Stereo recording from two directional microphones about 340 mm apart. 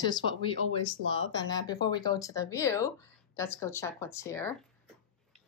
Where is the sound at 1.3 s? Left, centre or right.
Centre.